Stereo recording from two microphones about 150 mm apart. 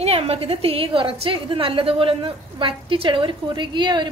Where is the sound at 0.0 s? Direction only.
40° right (ahead or behind).